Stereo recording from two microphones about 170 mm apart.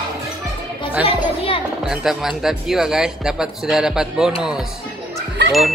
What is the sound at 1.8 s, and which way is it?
Speech, 5° right (ahead or behind).